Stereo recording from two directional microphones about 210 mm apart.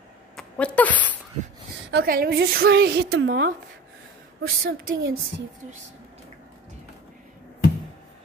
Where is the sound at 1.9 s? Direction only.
45° right (ahead or behind).